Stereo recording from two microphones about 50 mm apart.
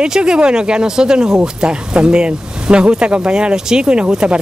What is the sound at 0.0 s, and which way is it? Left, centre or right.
Speech, centre.